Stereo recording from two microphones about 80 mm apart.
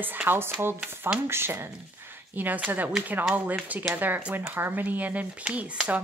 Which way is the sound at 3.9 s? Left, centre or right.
Right.